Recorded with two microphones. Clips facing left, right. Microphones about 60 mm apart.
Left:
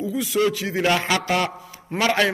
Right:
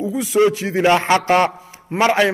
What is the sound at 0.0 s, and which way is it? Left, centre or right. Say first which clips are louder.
A man's voice: right 5 dB; right.